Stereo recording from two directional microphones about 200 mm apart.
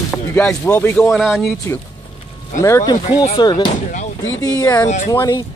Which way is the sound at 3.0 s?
35° left (ahead or behind).